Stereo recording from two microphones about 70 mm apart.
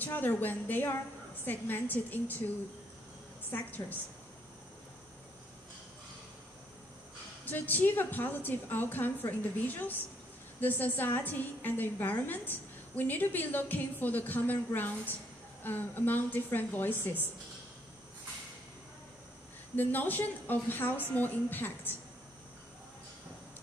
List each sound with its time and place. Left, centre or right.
0.0 s a woman's voice: left
3.5 s a woman's voice: left
7.4 s a woman's voice: left
19.7 s a woman's voice: left